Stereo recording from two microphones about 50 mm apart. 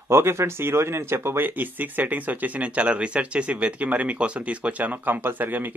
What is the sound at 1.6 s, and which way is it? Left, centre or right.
Speech, right.